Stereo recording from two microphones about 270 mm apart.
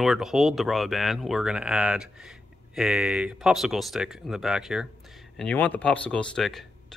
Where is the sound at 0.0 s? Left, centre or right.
Centre.